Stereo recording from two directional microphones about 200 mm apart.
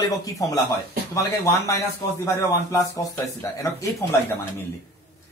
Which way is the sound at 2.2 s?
15° left (ahead or behind).